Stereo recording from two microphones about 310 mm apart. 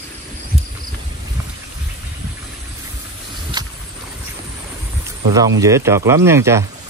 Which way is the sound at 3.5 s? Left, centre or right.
Centre.